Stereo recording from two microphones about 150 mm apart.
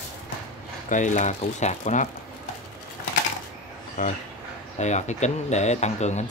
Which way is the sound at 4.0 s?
60° left (ahead or behind).